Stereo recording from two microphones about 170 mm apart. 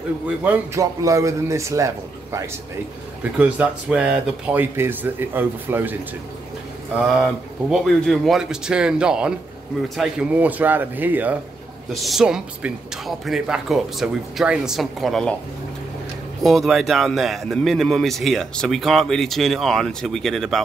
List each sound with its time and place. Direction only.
0.4 s speech: 15° right (ahead or behind)
3.3 s speech: 10° right (ahead or behind)
7.1 s speech: centre (ahead or behind)
11.9 s speech: centre (ahead or behind)
16.4 s speech: centre (ahead or behind)